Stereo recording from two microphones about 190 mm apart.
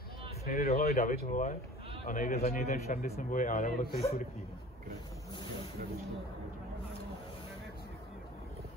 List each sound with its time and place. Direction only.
0.5 s a man's voice: 50° left (ahead or behind)